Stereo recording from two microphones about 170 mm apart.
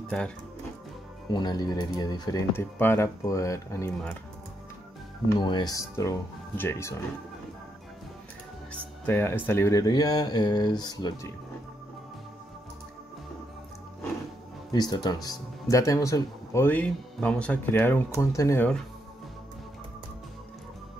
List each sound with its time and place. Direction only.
0.1 s speech: 5° left (ahead or behind)
1.3 s speech: 25° left (ahead or behind)
5.3 s speech: 25° left (ahead or behind)
9.0 s speech: 15° left (ahead or behind)
14.7 s speech: 25° left (ahead or behind)